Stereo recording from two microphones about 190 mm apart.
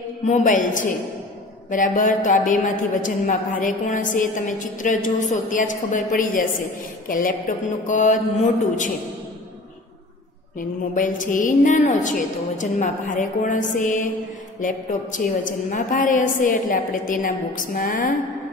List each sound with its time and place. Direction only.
0.3 s a woman's voice: 40° left (ahead or behind)
11.0 s a woman's voice: 45° left (ahead or behind)